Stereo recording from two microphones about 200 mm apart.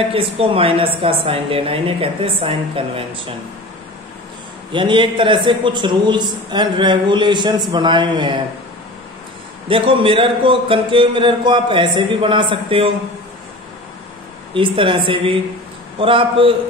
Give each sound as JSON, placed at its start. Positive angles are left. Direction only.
{"t": 0.1, "sound": "speech", "side_deg": -25}
{"t": 4.7, "sound": "speech", "side_deg": -25}
{"t": 9.7, "sound": "speech", "side_deg": -25}
{"t": 14.5, "sound": "speech", "side_deg": -25}